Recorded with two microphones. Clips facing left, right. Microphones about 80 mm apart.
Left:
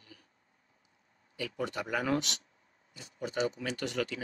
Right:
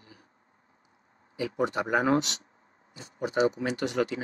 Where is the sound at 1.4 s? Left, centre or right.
Right.